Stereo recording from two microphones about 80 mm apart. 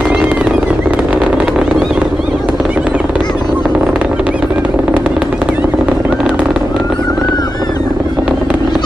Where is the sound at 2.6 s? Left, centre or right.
Centre.